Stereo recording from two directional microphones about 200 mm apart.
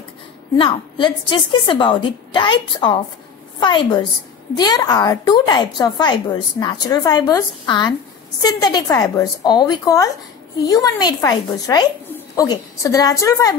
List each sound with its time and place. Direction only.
0.6 s a woman's voice: 25° left (ahead or behind)